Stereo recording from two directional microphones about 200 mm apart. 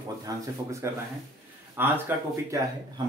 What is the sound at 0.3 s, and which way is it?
Speech, 20° right (ahead or behind).